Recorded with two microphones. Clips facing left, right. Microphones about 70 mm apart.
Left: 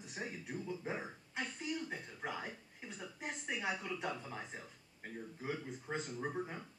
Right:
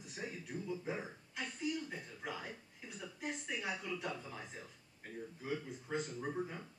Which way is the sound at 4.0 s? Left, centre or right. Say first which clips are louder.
Left 2 dB; left.